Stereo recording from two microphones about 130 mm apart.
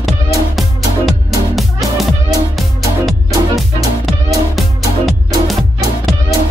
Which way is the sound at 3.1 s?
Centre (ahead or behind).